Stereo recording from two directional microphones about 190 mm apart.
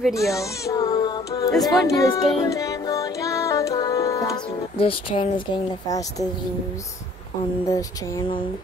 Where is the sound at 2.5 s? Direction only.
20° left (ahead or behind).